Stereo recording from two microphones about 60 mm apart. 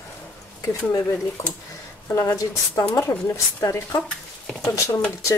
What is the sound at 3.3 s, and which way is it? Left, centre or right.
Speech, left.